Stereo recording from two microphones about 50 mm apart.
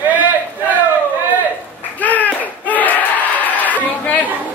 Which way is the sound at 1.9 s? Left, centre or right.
Left.